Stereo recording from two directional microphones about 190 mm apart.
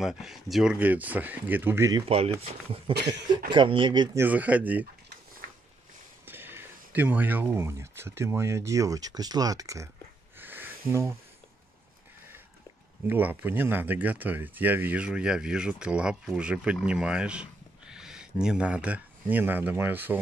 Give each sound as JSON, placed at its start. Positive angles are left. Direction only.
{"t": 0.0, "sound": "speech", "side_deg": 0}
{"t": 2.0, "sound": "speech", "side_deg": -30}
{"t": 4.2, "sound": "speech", "side_deg": -10}
{"t": 6.2, "sound": "speech", "side_deg": -10}
{"t": 10.4, "sound": "music", "side_deg": -10}
{"t": 10.9, "sound": "speech", "side_deg": -15}
{"t": 13.0, "sound": "speech", "side_deg": -10}